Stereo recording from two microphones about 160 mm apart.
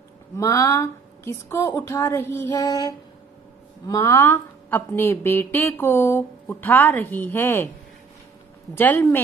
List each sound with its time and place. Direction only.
0.4 s a woman's voice: 20° left (ahead or behind)
3.8 s a woman's voice: 20° left (ahead or behind)
8.7 s a woman's voice: 15° left (ahead or behind)